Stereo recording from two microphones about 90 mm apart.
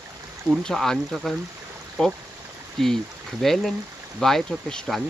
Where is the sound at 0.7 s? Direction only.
5° left (ahead or behind).